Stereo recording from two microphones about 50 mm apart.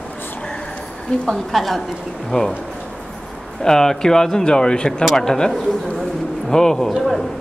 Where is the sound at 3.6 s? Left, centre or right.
Centre.